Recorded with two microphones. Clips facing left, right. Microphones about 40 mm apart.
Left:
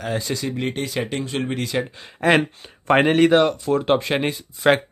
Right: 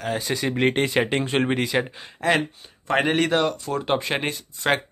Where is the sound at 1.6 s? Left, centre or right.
Right.